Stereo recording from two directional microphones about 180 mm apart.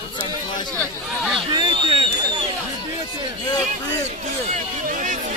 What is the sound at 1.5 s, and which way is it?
Speech, 25° right (ahead or behind).